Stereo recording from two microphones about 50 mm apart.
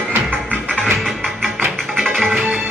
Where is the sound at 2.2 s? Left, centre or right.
Right.